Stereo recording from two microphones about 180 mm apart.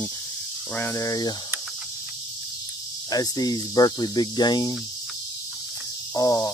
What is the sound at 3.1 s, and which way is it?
Speech, 20° left (ahead or behind).